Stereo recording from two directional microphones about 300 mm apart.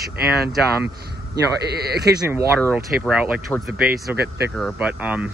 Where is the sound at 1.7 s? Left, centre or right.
Right.